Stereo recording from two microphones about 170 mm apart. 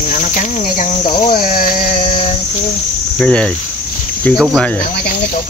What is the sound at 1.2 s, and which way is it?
Speech, 50° left (ahead or behind).